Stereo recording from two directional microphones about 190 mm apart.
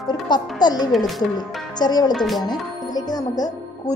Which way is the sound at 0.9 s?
Centre (ahead or behind).